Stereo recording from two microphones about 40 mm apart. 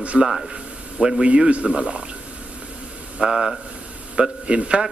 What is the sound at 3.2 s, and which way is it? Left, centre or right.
Speech, centre.